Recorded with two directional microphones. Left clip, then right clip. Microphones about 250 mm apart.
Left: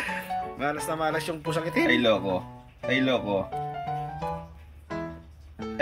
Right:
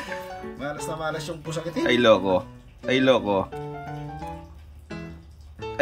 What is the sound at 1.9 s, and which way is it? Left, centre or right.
Speech, centre.